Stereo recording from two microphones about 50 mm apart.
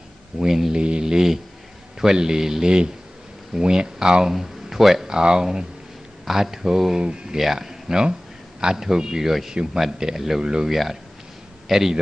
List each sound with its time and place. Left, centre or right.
0.4 s speech: centre
10.7 s speech: centre